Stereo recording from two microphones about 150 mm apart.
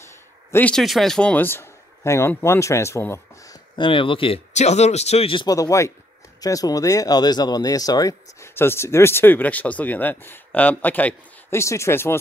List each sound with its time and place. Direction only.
0.1 s speech: 15° left (ahead or behind)
3.7 s a man's voice: 35° left (ahead or behind)
4.6 s a man's voice: 45° left (ahead or behind); by 12.2 s 15° left (ahead or behind)